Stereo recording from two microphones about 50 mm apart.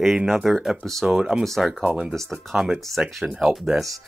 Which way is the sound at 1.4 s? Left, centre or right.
Centre.